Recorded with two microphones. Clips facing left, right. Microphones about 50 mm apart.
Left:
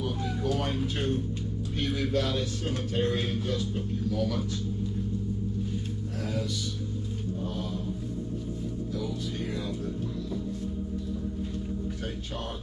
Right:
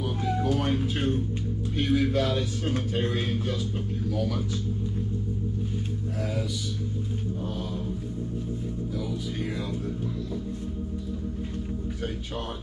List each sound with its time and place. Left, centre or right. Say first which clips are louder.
0.4 s music: right 2 dB; centre
1.8 s speech: right 4 dB; centre
4.1 s speech: right 1 dB; centre
7.4 s mantra: right 1 dB; centre